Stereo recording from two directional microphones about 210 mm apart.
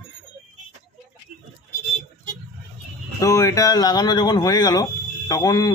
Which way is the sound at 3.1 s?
15° left (ahead or behind).